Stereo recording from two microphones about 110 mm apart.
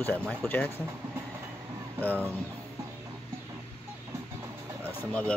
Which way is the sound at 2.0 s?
15° left (ahead or behind).